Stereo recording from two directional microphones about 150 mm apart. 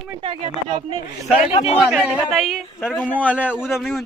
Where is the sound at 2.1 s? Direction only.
Centre (ahead or behind).